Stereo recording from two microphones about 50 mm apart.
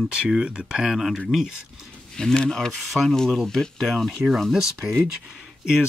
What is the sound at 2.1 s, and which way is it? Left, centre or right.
Speech, centre.